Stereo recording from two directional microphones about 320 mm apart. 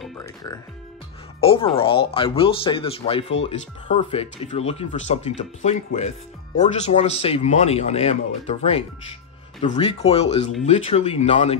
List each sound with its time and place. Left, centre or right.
0.0 s music: centre
1.4 s speech: centre